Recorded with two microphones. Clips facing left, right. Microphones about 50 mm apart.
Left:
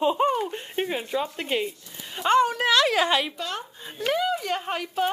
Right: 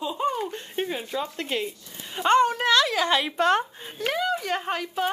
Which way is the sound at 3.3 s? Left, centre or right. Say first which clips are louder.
Right 11 dB; right.